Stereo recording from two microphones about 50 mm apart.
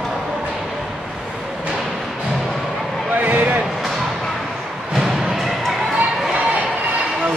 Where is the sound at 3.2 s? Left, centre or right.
Right.